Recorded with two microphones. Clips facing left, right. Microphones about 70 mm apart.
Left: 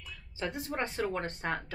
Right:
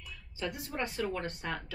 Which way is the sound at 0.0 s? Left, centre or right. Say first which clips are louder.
Left 1 dB; left.